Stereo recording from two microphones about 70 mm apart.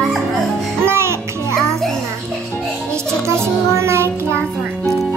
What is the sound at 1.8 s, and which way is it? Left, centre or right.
Music, centre.